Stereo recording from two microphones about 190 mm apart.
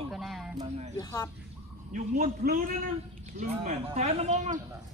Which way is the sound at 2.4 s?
50° right (ahead or behind).